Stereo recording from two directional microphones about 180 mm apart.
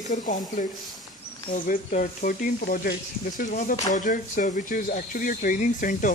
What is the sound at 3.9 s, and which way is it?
Speech, 45° left (ahead or behind).